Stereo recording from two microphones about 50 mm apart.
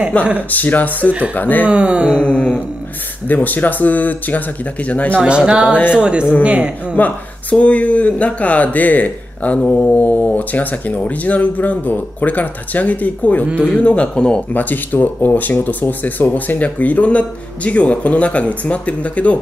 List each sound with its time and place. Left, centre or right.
0.2 s speech: left
1.7 s speech: right
2.1 s speech: left
3.3 s speech: left
5.5 s speech: right
7.0 s speech: left
14.5 s speech: left